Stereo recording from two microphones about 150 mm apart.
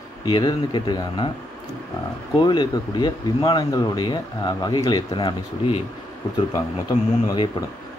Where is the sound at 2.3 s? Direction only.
30° left (ahead or behind).